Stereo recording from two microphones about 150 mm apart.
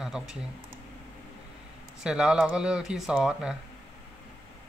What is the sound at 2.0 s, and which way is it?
Speech, 5° right (ahead or behind).